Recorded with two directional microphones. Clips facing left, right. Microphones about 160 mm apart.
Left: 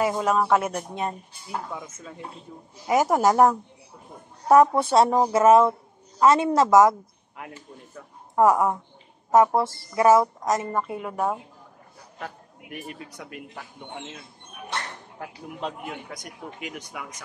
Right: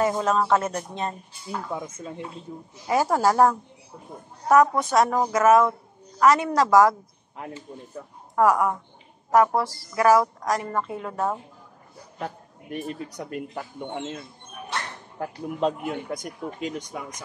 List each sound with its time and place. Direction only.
0.0 s speech: 10° left (ahead or behind)
1.7 s speech: 25° right (ahead or behind)
2.9 s a woman's voice: 20° left (ahead or behind)
7.3 s speech: 30° right (ahead or behind)
8.4 s a woman's voice: 25° left (ahead or behind)
10.8 s speech: 10° left (ahead or behind)
12.2 s a man's voice: 30° right (ahead or behind)
13.2 s speech: 40° right (ahead or behind)
15.3 s speech: 45° right (ahead or behind)
16.6 s speech: 35° right (ahead or behind)